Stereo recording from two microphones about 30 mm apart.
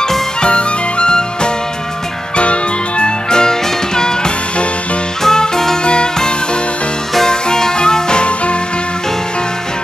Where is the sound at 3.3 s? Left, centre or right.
Left.